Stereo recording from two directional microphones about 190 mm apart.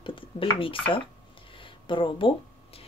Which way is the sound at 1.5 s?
25° left (ahead or behind).